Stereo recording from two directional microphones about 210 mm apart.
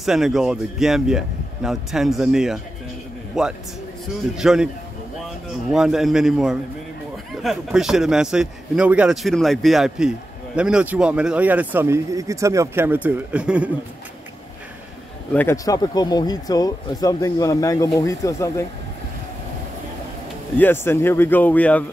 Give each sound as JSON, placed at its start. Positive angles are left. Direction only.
{"t": 0.0, "sound": "speech", "side_deg": 0}
{"t": 5.7, "sound": "speech", "side_deg": 0}
{"t": 15.3, "sound": "speech", "side_deg": 15}
{"t": 20.5, "sound": "speech", "side_deg": 10}